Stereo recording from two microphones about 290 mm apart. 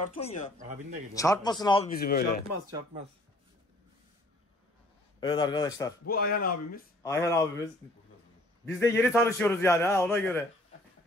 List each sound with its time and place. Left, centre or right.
0.1 s speech: left
0.6 s a man's voice: right
1.1 s a man's voice: centre
1.9 s speech: left
5.2 s a man's voice: centre
6.0 s speech: left
7.0 s a man's voice: centre
8.6 s a man's voice: centre